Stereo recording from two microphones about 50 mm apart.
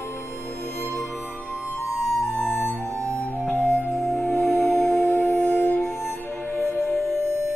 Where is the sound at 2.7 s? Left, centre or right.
Left.